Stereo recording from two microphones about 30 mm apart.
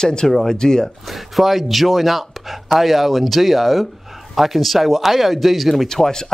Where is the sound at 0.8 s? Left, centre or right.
Centre.